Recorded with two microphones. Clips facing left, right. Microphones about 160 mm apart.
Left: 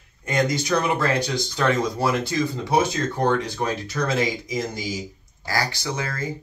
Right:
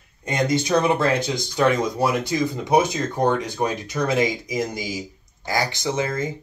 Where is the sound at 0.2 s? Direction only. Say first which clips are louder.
Right 1 dB; 25° right (ahead or behind).